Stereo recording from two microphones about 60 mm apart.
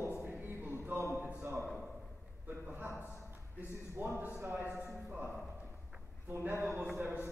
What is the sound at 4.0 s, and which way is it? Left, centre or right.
A man's voice, right.